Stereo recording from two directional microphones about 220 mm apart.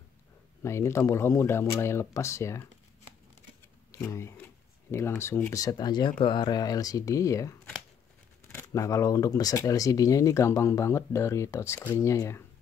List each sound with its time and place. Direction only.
0.6 s speech: 10° left (ahead or behind)
3.9 s a sound: 10° left (ahead or behind)
4.9 s speech: 10° left (ahead or behind)
8.5 s speech: 15° left (ahead or behind)